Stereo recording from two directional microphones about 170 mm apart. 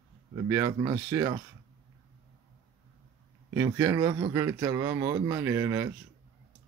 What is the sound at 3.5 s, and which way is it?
A man's voice, 20° right (ahead or behind).